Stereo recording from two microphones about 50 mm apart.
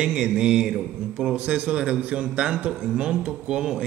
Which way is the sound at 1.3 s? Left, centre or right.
Right.